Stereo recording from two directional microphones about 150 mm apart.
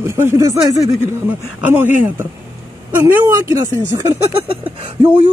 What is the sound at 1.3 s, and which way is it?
Speech, 10° right (ahead or behind).